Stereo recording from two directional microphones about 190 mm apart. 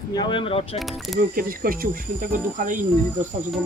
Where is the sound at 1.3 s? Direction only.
50° right (ahead or behind).